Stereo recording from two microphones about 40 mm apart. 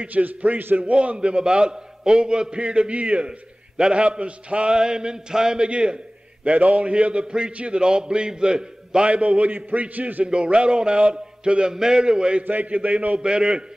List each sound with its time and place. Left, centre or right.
0.0 s a man's voice: right
0.6 s a man's voice: right
0.8 s a man's voice: right
4.7 s a man's voice: centre
6.4 s a man's voice: right
9.1 s a man's voice: right
9.5 s a man's voice: right
10.2 s a man's voice: right
11.1 s mantra: right
11.7 s a man's voice: centre
12.4 s a man's voice: right
13.2 s a man's voice: centre